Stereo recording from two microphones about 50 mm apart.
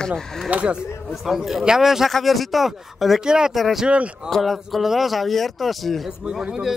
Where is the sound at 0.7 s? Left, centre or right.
Centre.